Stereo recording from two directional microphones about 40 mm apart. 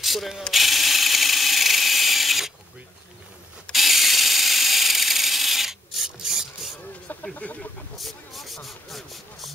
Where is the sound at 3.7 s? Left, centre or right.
Centre.